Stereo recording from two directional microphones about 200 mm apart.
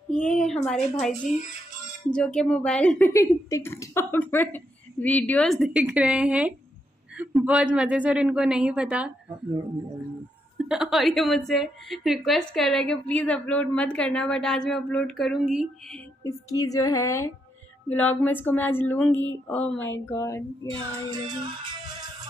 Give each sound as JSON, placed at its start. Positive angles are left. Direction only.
{"t": 0.1, "sound": "a woman's voice", "side_deg": 5}
{"t": 2.1, "sound": "a woman's voice", "side_deg": 5}
{"t": 10.6, "sound": "a woman's voice", "side_deg": 0}
{"t": 16.3, "sound": "speech", "side_deg": 15}
{"t": 21.1, "sound": "music", "side_deg": -25}